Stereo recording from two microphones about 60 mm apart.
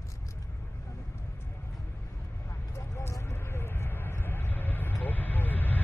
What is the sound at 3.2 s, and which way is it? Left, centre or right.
Vehicle, left.